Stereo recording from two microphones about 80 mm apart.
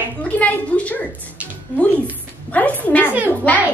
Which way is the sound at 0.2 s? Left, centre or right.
Centre.